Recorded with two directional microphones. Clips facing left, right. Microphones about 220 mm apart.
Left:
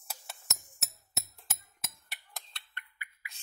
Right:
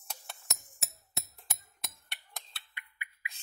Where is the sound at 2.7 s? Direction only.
15° right (ahead or behind).